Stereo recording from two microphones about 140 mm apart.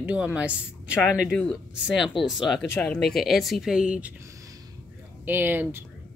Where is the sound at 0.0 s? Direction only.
10° right (ahead or behind).